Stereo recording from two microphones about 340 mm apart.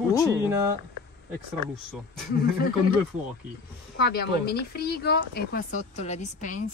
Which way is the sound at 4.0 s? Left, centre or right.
Left.